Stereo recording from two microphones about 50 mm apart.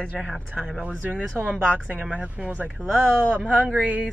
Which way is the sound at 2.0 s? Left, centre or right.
Right.